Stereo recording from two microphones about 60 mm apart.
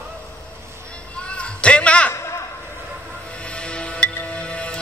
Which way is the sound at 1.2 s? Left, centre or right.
Centre.